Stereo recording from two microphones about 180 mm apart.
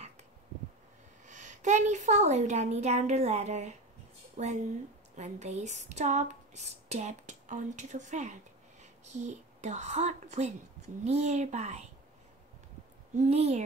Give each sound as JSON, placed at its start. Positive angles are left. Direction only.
{"t": 1.2, "sound": "speech", "side_deg": -40}
{"t": 13.1, "sound": "speech", "side_deg": -40}